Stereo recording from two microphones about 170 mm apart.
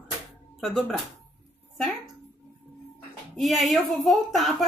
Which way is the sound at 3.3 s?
Centre (ahead or behind).